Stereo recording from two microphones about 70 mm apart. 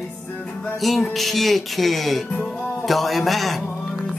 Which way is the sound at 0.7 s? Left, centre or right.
Centre.